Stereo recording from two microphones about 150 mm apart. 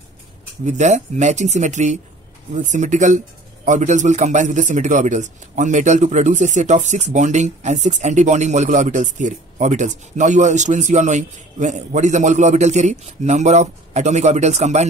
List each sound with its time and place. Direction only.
0.7 s a man's voice: 50° right (ahead or behind)